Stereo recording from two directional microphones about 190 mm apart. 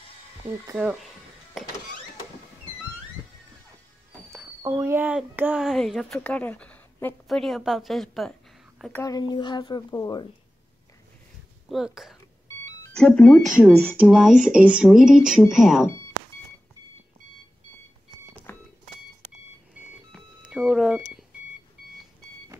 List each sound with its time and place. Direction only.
0.7 s speech: 5° right (ahead or behind)
4.3 s speech: 15° right (ahead or behind); by 9.0 s centre (ahead or behind)
9.0 s speech: 20° left (ahead or behind)
11.7 s speech: centre (ahead or behind)
13.5 s speech: 10° right (ahead or behind)
18.5 s vehicle: 10° left (ahead or behind)
19.8 s a sound: centre (ahead or behind)